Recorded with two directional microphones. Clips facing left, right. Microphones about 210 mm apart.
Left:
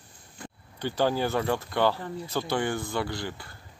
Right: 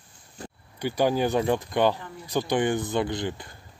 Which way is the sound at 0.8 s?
15° right (ahead or behind).